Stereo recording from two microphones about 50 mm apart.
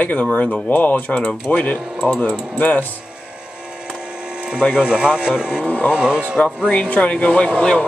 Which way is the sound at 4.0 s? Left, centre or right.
Centre.